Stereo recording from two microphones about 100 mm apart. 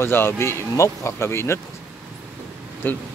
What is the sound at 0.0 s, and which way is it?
Speech, 25° left (ahead or behind).